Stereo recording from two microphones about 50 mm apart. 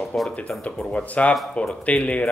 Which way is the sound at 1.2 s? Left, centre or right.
Left.